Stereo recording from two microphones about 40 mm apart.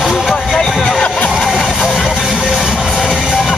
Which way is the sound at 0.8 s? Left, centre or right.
Centre.